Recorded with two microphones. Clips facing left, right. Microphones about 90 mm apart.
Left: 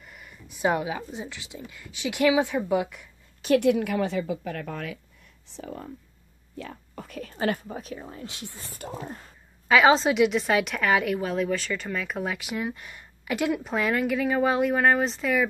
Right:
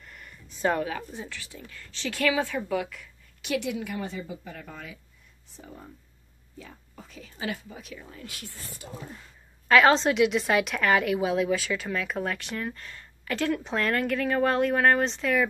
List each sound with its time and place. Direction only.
0.0 s speech: 5° left (ahead or behind)
3.4 s a woman's voice: 50° left (ahead or behind); by 4.9 s 70° left (ahead or behind)
5.6 s speech: 90° left
6.5 s speech: 65° left (ahead or behind); by 8.5 s 25° left (ahead or behind)
8.7 s speech: 45° left (ahead or behind)
9.7 s speech: 5° left (ahead or behind)